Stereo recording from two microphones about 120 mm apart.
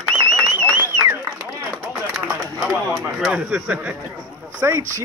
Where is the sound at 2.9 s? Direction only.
Centre (ahead or behind).